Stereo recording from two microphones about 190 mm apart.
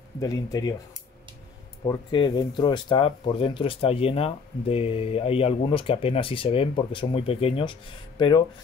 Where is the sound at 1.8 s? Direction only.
25° left (ahead or behind).